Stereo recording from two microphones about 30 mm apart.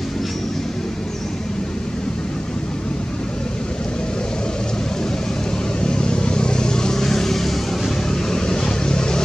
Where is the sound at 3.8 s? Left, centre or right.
Left.